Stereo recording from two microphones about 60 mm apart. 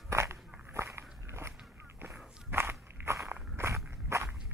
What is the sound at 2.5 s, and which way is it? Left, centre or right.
Biting, right.